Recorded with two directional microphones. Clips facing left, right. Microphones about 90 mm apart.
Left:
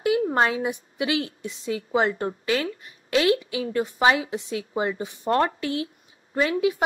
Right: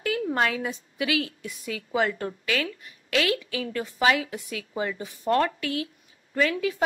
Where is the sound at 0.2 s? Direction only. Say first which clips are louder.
Left 3 dB; 30° left (ahead or behind).